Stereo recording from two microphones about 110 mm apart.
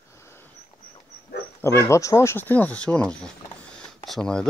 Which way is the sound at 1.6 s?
25° left (ahead or behind).